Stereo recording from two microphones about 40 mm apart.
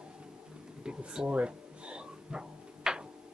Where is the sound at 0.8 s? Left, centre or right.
Centre.